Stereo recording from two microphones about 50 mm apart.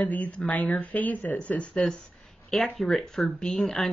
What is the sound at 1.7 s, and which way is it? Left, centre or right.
Speech, centre.